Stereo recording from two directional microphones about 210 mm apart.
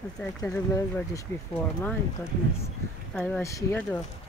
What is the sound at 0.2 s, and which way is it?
Speech, 10° left (ahead or behind).